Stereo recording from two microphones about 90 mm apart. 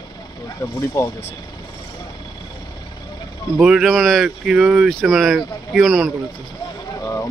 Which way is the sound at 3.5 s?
5° right (ahead or behind).